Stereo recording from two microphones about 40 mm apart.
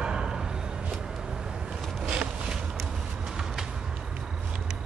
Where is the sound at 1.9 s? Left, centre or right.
Centre.